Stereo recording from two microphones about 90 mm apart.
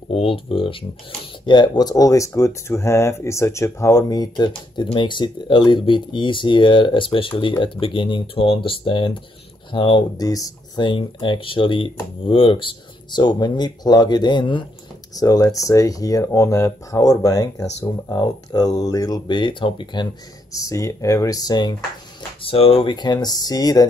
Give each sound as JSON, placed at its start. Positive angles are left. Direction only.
{"t": 0.1, "sound": "speech", "side_deg": 85}
{"t": 10.1, "sound": "speech", "side_deg": 40}
{"t": 10.8, "sound": "speech", "side_deg": 60}
{"t": 15.1, "sound": "speech", "side_deg": 40}
{"t": 20.5, "sound": "speech", "side_deg": 35}
{"t": 22.4, "sound": "speech", "side_deg": 90}
{"t": 22.9, "sound": "speech", "side_deg": 50}